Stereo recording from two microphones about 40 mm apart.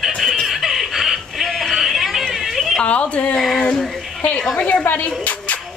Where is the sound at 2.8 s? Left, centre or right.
Left.